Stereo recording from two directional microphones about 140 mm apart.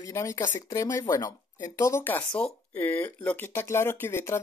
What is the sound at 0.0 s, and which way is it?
Speech, 20° left (ahead or behind).